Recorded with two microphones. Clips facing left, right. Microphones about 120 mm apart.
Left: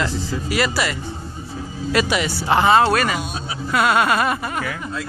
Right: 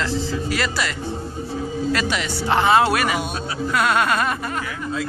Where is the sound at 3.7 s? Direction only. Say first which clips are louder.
Left 3 dB; 5° left (ahead or behind).